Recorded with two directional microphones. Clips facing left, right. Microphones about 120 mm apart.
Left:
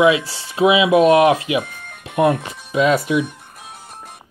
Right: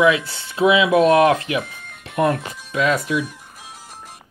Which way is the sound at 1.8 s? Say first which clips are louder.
Left 3 dB; 65° left (ahead or behind).